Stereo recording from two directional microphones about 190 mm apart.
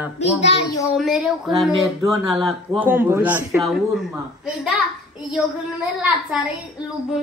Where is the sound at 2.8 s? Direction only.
10° right (ahead or behind).